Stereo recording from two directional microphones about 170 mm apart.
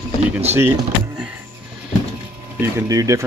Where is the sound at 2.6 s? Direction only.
20° right (ahead or behind).